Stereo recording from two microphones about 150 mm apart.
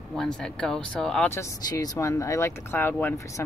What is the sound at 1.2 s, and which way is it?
Speech, 20° left (ahead or behind).